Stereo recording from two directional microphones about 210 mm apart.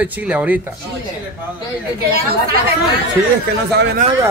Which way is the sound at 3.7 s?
50° right (ahead or behind).